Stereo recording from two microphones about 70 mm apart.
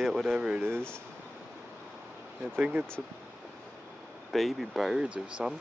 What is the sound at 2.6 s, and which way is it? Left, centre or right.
Speech, centre.